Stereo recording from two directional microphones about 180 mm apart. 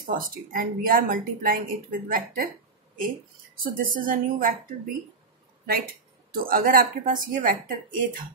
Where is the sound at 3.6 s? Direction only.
50° right (ahead or behind).